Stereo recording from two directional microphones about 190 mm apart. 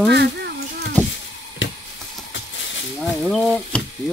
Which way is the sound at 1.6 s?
80° left.